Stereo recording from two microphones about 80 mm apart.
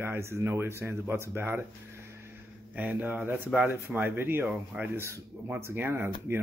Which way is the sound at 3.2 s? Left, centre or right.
Centre.